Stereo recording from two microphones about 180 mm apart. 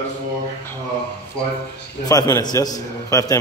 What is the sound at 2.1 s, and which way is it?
A man's voice, 20° left (ahead or behind).